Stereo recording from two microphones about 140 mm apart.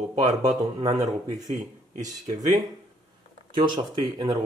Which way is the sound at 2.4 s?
25° right (ahead or behind).